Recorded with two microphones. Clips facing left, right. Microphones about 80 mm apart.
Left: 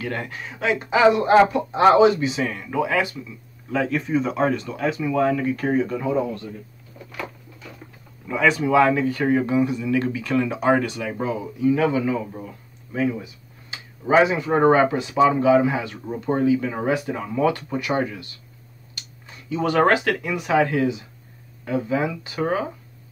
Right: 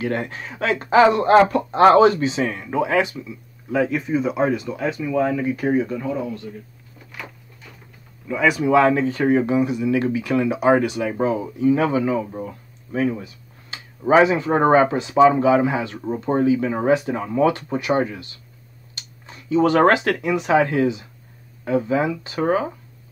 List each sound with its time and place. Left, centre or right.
0.0 s speech: right
0.4 s speech: right
2.2 s speech: right
3.9 s speech: centre
8.3 s speech: centre
8.6 s speech: right
12.9 s speech: right